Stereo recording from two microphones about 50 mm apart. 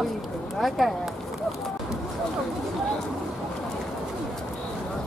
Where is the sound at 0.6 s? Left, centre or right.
Centre.